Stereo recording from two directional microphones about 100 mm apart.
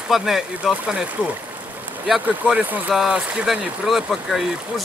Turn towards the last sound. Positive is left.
turn(degrees=0)  # may be behind; listen again after turning